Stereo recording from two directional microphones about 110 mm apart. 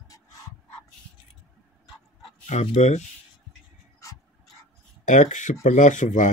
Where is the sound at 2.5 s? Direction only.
90° left.